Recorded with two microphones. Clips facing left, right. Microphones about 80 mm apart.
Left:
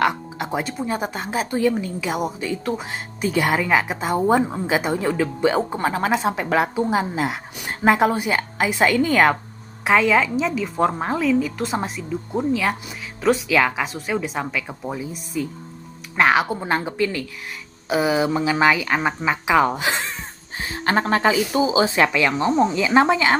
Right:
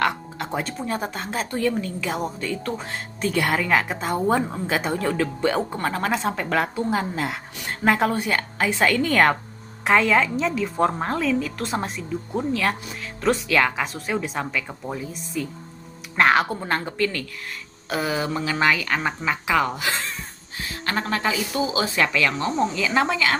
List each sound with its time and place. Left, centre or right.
0.0 s a woman's voice: centre; by 23.3 s left